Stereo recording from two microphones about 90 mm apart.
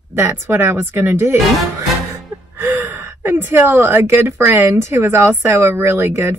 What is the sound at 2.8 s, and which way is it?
A woman's voice, 20° right (ahead or behind).